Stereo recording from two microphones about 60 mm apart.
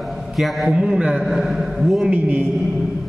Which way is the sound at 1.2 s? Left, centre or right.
Centre.